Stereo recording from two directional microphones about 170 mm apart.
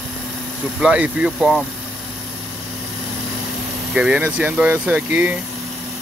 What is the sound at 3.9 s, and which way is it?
Speech, 5° right (ahead or behind).